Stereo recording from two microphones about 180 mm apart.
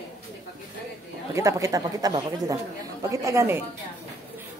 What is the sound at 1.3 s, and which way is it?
A woman's voice, 15° right (ahead or behind).